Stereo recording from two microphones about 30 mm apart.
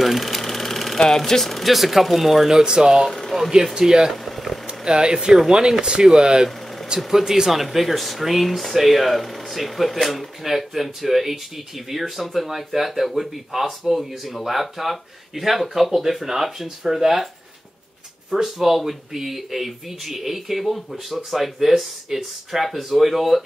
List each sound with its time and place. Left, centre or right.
0.0 s engine: centre
0.9 s speech: centre
1.5 s speech: centre
2.6 s speech: right
3.3 s speech: centre
3.7 s speech: centre
4.1 s a sound: centre
4.6 s speech: right
7.1 s speech: centre
7.5 s speech: centre
18.3 s speech: centre